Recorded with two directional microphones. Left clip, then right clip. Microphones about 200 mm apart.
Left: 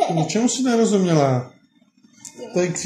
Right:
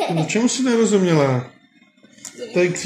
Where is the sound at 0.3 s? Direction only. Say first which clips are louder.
Right 1 dB; 5° left (ahead or behind).